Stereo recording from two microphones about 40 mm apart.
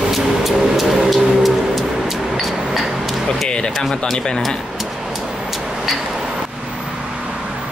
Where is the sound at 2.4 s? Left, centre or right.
Centre.